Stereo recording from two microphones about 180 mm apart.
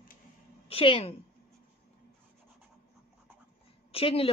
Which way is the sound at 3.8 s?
30° left (ahead or behind).